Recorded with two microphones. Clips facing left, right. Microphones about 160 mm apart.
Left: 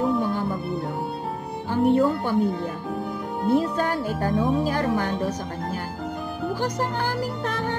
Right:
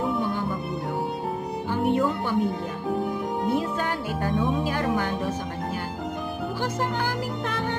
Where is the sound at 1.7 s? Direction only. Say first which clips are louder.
Left 4 dB; 35° left (ahead or behind).